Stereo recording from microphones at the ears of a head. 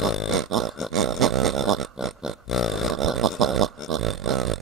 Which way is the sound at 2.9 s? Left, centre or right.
Right.